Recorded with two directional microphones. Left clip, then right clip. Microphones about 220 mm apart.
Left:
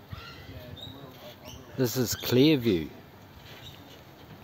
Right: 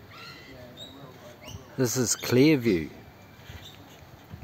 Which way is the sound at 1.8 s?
5° right (ahead or behind).